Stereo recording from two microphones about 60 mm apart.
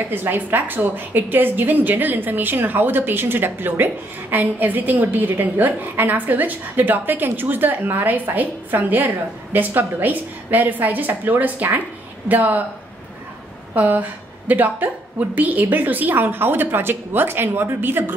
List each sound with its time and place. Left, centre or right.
0.1 s a woman's voice: right
13.7 s a woman's voice: right